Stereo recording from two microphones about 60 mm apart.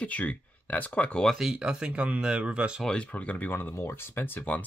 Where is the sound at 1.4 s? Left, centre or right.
Centre.